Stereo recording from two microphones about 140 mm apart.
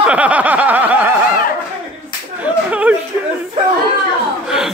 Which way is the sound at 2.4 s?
10° right (ahead or behind).